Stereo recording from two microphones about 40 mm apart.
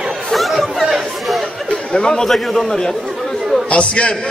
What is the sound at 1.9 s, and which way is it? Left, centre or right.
Speech, centre.